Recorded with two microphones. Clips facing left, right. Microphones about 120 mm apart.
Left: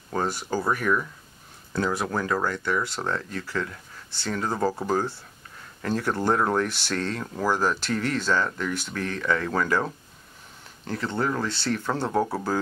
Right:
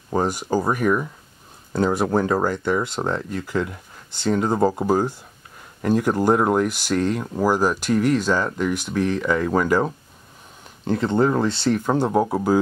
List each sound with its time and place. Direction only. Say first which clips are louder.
0.1 s speech: right 6 dB; 20° right (ahead or behind)